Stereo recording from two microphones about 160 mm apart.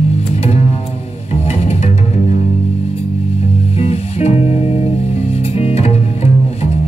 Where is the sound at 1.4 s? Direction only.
40° left (ahead or behind).